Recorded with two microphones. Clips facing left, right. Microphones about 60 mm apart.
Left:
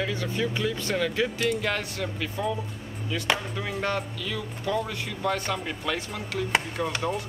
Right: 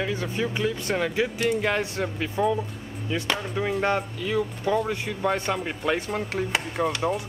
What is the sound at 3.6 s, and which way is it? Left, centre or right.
Speech, centre.